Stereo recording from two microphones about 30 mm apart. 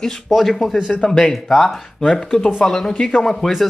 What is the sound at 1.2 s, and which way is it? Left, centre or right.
Speech, centre.